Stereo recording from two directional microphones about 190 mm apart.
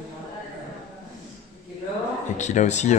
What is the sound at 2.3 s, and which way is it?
Speech, 40° left (ahead or behind).